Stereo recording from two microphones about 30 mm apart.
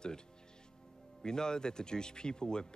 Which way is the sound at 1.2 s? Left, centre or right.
Left.